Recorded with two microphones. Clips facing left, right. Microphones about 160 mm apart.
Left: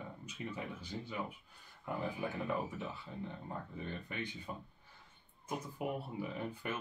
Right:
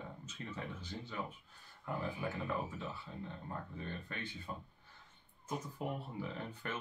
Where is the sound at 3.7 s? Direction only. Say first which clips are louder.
Left 2 dB; 15° left (ahead or behind).